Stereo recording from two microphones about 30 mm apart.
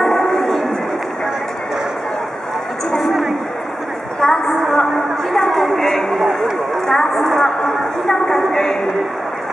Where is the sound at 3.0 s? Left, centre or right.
Centre.